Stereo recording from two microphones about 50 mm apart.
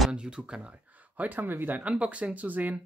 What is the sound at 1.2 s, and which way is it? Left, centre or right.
Speech, right.